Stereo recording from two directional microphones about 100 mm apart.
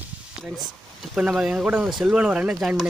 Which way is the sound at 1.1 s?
10° right (ahead or behind).